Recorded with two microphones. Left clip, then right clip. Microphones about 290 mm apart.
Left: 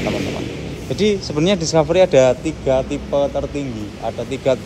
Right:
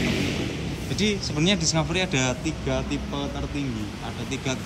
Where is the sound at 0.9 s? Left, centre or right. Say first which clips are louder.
Left 9 dB; centre.